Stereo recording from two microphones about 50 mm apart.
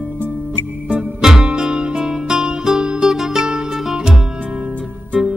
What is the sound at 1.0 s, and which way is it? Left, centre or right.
Music, centre.